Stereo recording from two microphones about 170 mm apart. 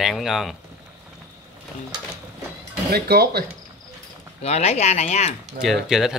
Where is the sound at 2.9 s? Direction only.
70° right (ahead or behind).